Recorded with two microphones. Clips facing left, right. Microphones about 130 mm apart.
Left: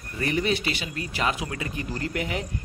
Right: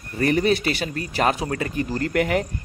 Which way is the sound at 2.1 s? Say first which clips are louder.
Right 10 dB; 60° right (ahead or behind).